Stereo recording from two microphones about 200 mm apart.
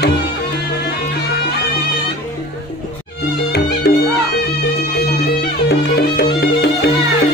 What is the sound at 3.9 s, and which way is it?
Music, 55° left (ahead or behind).